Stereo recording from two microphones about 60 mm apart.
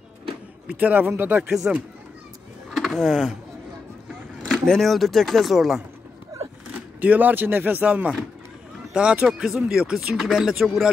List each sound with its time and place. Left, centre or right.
0.7 s speech: right
1.6 s speech: centre
2.7 s speech: centre
4.5 s speech: centre
7.0 s speech: right; by 10.9 s centre